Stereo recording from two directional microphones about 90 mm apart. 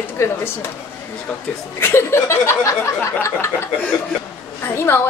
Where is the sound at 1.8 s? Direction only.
30° left (ahead or behind).